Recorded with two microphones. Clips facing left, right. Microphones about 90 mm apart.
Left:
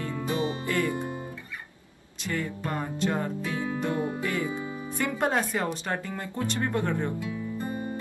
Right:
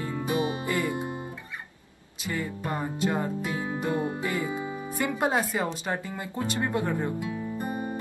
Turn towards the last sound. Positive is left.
turn(degrees=-20)  # may be behind; listen again after turning